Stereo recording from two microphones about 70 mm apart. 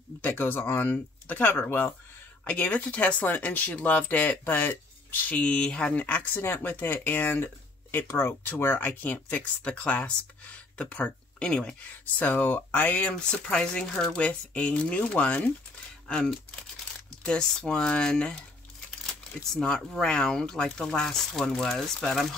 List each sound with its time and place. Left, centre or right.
0.2 s speech: left
2.4 s speech: centre
5.3 s speech: centre
12.2 s speech: left
19.5 s speech: centre